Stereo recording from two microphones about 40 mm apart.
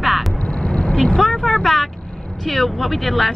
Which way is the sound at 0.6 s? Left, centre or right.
Left.